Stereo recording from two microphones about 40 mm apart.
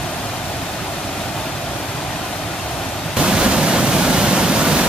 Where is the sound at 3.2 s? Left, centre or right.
Centre.